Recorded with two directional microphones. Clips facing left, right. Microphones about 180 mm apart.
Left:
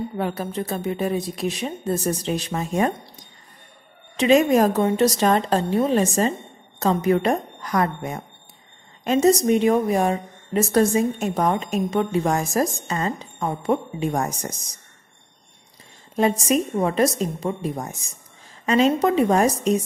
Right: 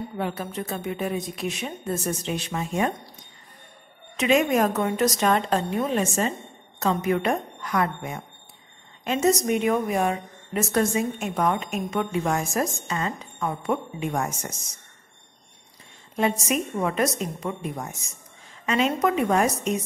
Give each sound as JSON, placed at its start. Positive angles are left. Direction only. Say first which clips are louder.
{"t": 0.2, "sound": "a woman's voice", "louder": "left 2 dB", "side_deg": 40}
{"t": 4.2, "sound": "a woman's voice", "louder": "left 4 dB", "side_deg": 35}
{"t": 16.2, "sound": "a woman's voice", "louder": "left 4 dB", "side_deg": 35}